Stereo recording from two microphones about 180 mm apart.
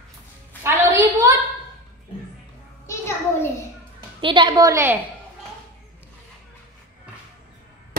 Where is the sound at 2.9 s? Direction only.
15° left (ahead or behind).